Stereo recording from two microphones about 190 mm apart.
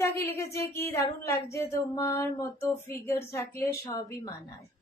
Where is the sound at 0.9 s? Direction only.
15° left (ahead or behind).